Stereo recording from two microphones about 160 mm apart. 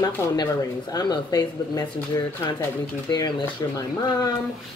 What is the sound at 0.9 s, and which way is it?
Speech, 25° left (ahead or behind).